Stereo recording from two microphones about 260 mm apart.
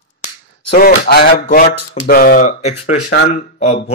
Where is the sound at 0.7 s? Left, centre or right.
Left.